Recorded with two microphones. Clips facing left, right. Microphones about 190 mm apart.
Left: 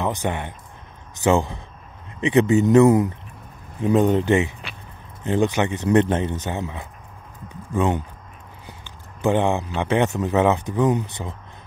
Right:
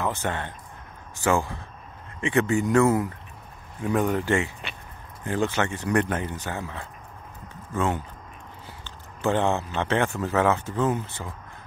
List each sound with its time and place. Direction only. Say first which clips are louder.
0.0 s speech: left 3 dB; 15° left (ahead or behind)
8.6 s a sound: left 1 dB; 15° left (ahead or behind)
9.8 s speech: left 4 dB; 15° left (ahead or behind)